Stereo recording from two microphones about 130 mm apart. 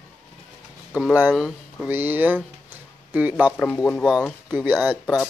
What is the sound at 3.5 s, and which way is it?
Speech, 10° left (ahead or behind).